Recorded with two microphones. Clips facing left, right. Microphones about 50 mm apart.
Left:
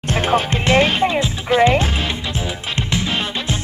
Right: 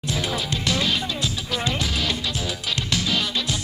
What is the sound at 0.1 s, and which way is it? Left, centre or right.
Music, left.